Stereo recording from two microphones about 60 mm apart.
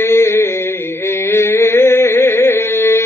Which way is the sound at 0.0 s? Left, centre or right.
Left.